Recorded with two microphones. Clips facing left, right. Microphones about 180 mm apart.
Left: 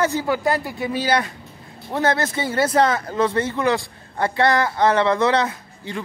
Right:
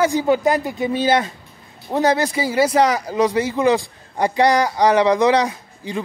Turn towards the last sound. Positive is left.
turn(degrees=-15)  # may be behind; listen again after turning